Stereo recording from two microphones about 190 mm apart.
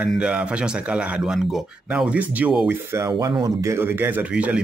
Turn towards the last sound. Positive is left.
turn(degrees=-5)  # may be behind; listen again after turning